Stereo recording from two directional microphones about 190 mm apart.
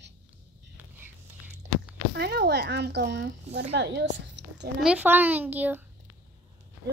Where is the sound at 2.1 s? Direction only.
60° right (ahead or behind).